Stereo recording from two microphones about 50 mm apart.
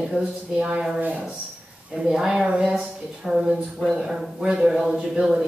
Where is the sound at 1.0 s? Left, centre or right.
Right.